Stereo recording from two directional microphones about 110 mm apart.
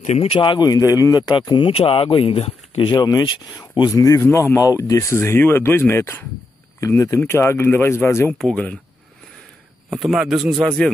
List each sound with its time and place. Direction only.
0.0 s speech: 75° left (ahead or behind); by 0.7 s 50° left (ahead or behind)
0.7 s speech: 30° left (ahead or behind)
1.3 s speech: 50° left (ahead or behind); by 2.5 s 65° left (ahead or behind)
2.8 s speech: 40° left (ahead or behind); by 8.3 s 25° left (ahead or behind)
8.4 s speech: 10° left (ahead or behind)
9.9 s speech: centre (ahead or behind)